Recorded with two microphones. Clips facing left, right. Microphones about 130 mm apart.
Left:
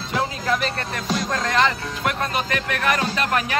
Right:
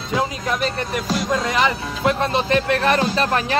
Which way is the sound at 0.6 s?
Centre (ahead or behind).